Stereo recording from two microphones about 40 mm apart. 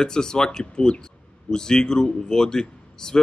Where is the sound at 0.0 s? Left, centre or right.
Centre.